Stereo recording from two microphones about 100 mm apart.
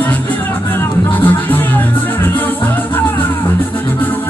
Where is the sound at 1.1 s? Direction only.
15° left (ahead or behind).